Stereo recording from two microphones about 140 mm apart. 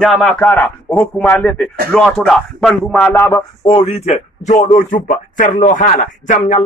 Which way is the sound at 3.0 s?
20° left (ahead or behind).